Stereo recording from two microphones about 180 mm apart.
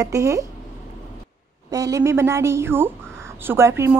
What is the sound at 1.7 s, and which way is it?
A woman's voice, 20° right (ahead or behind).